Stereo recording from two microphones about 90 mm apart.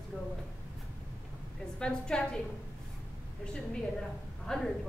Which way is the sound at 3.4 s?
10° left (ahead or behind).